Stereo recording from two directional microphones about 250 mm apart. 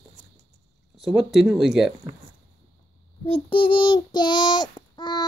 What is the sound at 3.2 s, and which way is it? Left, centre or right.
Child singing, left.